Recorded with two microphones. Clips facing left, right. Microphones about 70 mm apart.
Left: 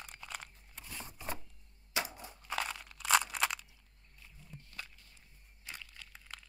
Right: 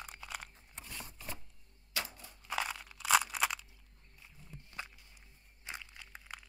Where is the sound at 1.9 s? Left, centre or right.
Centre.